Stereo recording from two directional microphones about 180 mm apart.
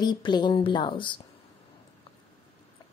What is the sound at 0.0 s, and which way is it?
Speech, 25° left (ahead or behind).